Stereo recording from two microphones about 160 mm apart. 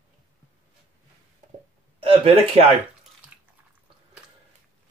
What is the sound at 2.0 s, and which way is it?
Speech, 35° right (ahead or behind).